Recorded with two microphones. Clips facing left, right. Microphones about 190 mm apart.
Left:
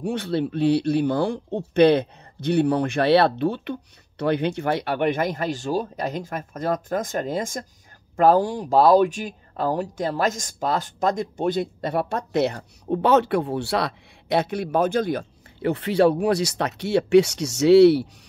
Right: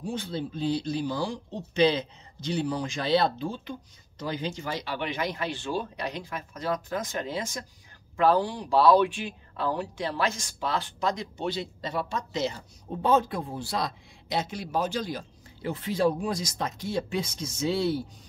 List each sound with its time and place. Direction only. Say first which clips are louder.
0.0 s speech: left 8 dB; 70° left (ahead or behind)